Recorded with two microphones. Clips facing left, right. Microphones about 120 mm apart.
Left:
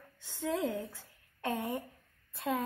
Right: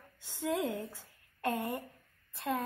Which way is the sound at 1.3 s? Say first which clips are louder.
Right 1 dB; centre (ahead or behind).